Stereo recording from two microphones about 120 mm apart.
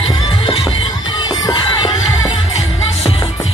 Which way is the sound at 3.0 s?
55° left (ahead or behind).